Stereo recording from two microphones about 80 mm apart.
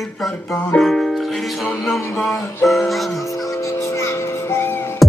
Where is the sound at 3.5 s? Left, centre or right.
Left.